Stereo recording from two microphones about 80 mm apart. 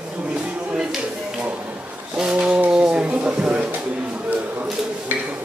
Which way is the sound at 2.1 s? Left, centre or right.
Centre.